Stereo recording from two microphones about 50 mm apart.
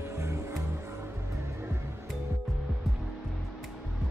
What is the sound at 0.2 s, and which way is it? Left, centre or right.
Music, right.